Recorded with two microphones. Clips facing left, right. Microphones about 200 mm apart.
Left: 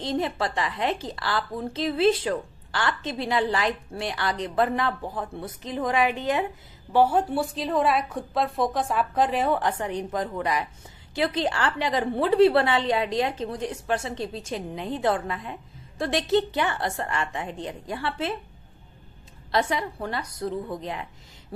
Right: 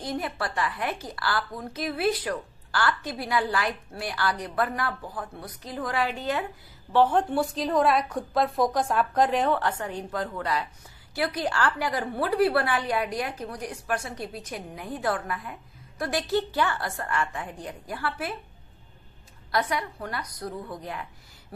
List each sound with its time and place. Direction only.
0.0 s a woman's voice: 25° left (ahead or behind); by 9.5 s centre (ahead or behind)
9.5 s a woman's voice: 15° left (ahead or behind)
19.5 s a woman's voice: 25° left (ahead or behind)